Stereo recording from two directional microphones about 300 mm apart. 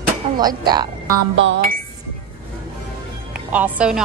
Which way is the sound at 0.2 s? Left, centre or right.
Centre.